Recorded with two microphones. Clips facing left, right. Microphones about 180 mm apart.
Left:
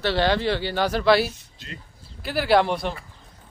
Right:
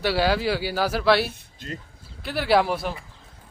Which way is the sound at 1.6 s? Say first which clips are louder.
Right 5 dB; 50° right (ahead or behind).